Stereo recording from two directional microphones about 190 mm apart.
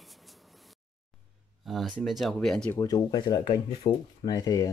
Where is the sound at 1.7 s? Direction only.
Centre (ahead or behind).